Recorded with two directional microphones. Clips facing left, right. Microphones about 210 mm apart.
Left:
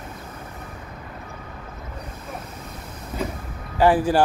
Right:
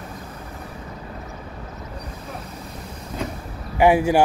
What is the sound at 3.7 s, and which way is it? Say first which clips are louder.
Speech: right 2 dB; 10° right (ahead or behind).